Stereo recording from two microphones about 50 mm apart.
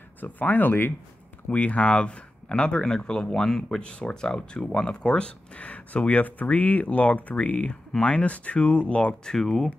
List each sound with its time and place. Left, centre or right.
0.2 s speech: left
1.5 s speech: left
9.2 s speech: centre